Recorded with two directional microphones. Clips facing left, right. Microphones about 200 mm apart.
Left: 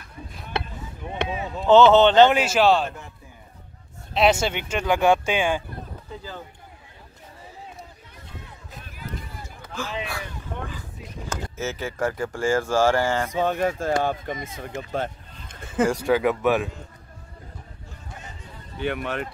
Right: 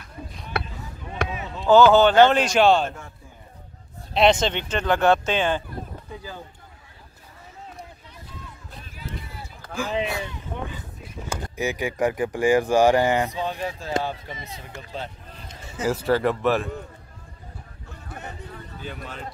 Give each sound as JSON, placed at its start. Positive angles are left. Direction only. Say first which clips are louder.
{"t": 1.1, "sound": "chop", "louder": "left 2 dB", "side_deg": 25}
{"t": 2.3, "sound": "speech", "louder": "right 1 dB", "side_deg": 5}
{"t": 4.1, "sound": "speech", "louder": "right 1 dB", "side_deg": 5}
{"t": 8.8, "sound": "run", "louder": "even", "side_deg": 50}
{"t": 10.0, "sound": "speech", "louder": "right 4 dB", "side_deg": -20}
{"t": 13.3, "sound": "a man's voice", "louder": "left 6 dB", "side_deg": 50}
{"t": 16.1, "sound": "speech", "louder": "right 3 dB", "side_deg": 0}
{"t": 17.8, "sound": "a sound", "louder": "right 6 dB", "side_deg": -60}
{"t": 18.8, "sound": "speech", "louder": "left 11 dB", "side_deg": 70}